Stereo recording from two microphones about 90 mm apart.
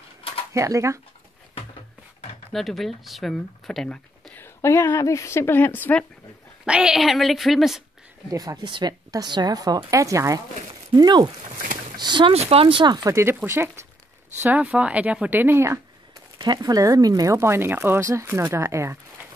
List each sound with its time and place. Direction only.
0.5 s speech: 35° right (ahead or behind)
2.5 s speech: centre (ahead or behind)
4.4 s a woman's voice: 30° left (ahead or behind)
6.6 s speech: 10° right (ahead or behind)
8.3 s speech: 40° right (ahead or behind)
8.6 s a woman's voice: 60° right (ahead or behind)
9.1 s a woman's voice: 50° right (ahead or behind)
10.9 s a woman's voice: 55° right (ahead or behind); by 12.8 s 85° right
12.8 s a woman's voice: 50° right (ahead or behind)
13.1 s speech: 25° right (ahead or behind)
14.4 s speech: 15° right (ahead or behind)
16.5 s speech: 40° right (ahead or behind)